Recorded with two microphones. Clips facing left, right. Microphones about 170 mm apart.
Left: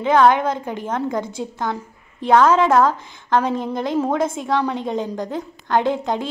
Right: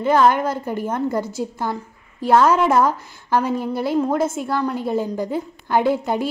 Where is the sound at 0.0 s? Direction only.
5° right (ahead or behind).